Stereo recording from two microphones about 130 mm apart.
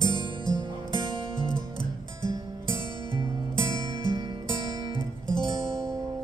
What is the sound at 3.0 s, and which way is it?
Music, 40° right (ahead or behind).